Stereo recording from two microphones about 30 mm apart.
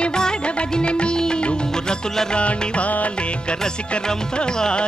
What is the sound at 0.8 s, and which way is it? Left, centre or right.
Music, left.